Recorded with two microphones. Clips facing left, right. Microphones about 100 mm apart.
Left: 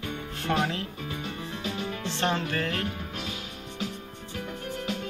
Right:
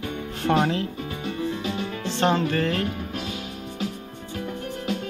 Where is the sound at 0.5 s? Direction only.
30° right (ahead or behind).